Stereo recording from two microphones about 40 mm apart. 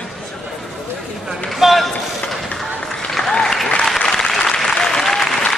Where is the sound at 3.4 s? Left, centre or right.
Centre.